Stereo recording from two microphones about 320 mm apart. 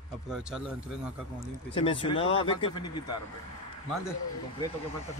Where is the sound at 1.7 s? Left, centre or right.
Centre.